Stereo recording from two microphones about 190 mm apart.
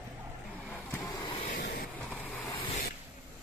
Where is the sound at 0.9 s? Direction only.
20° left (ahead or behind).